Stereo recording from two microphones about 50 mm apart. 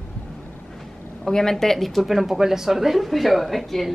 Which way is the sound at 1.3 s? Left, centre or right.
Centre.